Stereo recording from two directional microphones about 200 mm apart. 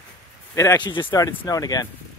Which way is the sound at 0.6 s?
20° left (ahead or behind).